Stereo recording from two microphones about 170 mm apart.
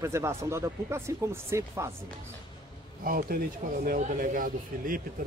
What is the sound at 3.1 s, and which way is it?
Speech, 55° right (ahead or behind).